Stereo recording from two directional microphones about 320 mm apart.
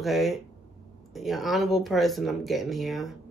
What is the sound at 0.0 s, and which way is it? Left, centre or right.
Speech, centre.